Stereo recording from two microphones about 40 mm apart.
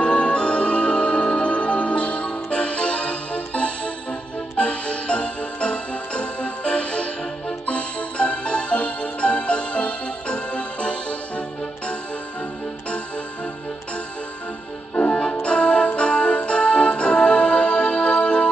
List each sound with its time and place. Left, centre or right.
0.0 s music: left
15.0 s music: left